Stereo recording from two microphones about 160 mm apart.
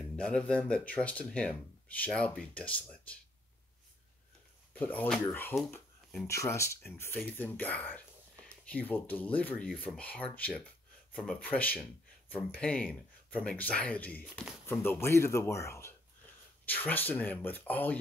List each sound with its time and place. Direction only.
0.1 s speech: 5° left (ahead or behind)
4.7 s speech: 10° left (ahead or behind)